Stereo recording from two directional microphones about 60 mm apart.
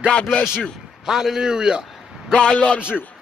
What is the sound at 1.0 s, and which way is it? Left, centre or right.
A man's voice, centre.